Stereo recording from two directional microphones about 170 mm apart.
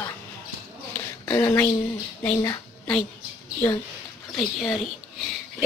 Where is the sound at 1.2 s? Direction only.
15° left (ahead or behind).